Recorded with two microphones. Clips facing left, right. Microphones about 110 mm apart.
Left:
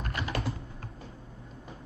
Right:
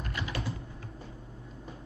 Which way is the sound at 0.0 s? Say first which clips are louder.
Left 2 dB; 50° left (ahead or behind).